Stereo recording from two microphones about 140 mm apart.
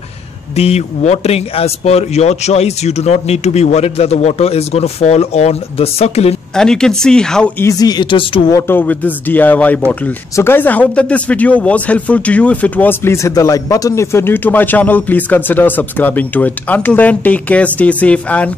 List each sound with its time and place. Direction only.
0.6 s speech: 50° left (ahead or behind)
6.5 s speech: 5° left (ahead or behind)
7.6 s speech: 25° left (ahead or behind)
8.5 s a man's voice: 20° left (ahead or behind)